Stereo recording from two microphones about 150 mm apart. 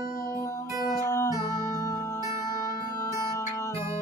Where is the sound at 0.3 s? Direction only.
20° left (ahead or behind).